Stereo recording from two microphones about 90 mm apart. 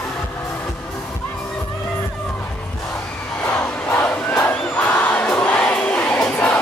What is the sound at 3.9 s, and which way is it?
Crowd, 15° left (ahead or behind).